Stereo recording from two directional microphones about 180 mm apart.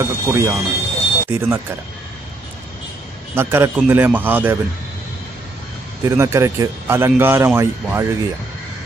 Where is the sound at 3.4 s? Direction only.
10° right (ahead or behind).